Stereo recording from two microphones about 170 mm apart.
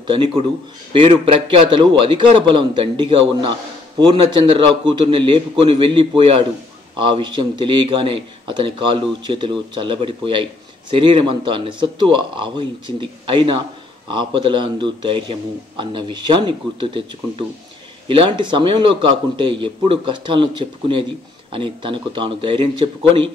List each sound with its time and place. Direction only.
0.0 s speech: 30° right (ahead or behind)